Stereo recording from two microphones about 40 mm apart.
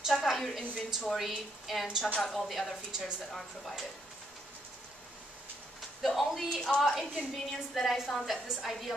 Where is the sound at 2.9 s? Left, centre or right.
Centre.